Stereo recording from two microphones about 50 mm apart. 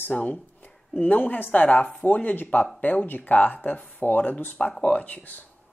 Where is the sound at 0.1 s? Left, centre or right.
Left.